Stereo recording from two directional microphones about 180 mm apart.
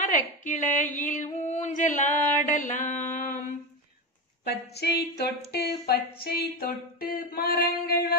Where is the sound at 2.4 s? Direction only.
45° left (ahead or behind).